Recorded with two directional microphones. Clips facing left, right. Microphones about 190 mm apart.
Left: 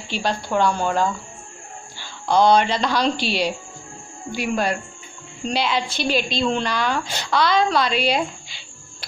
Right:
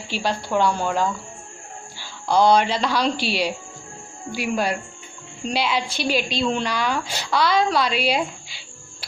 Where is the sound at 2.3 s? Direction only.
5° right (ahead or behind).